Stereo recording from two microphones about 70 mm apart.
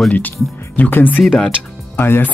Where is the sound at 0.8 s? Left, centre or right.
Left.